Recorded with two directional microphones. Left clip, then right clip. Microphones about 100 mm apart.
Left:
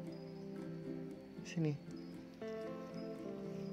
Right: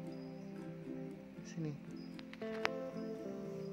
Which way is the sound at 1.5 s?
50° left (ahead or behind).